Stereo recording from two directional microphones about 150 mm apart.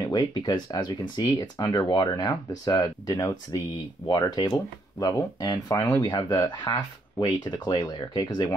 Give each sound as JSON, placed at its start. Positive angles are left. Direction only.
{"t": 0.0, "sound": "speech", "side_deg": 30}